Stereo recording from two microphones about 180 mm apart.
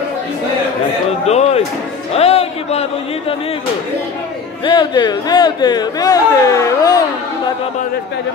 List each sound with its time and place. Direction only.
1.2 s music: 35° left (ahead or behind)
2.1 s speech: 35° left (ahead or behind)
4.6 s speech: 25° left (ahead or behind)